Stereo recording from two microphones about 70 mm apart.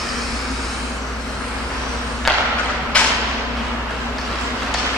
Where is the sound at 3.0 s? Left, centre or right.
Centre.